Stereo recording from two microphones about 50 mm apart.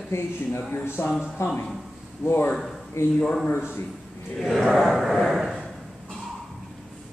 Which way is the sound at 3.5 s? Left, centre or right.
Right.